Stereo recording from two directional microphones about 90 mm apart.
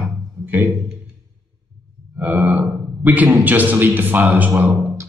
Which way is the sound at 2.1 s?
20° right (ahead or behind).